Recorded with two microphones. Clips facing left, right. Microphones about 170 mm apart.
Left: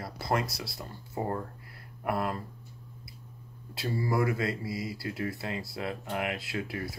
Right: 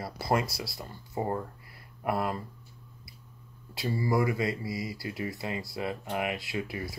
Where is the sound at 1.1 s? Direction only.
15° right (ahead or behind).